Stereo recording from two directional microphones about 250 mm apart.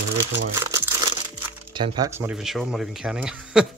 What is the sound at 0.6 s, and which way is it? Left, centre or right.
Crumpling, centre.